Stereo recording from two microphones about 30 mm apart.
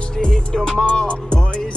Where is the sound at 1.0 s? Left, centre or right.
Left.